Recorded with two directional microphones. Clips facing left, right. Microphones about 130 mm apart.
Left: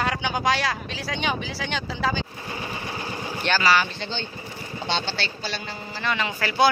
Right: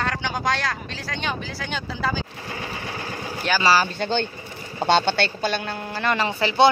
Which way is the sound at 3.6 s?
35° right (ahead or behind).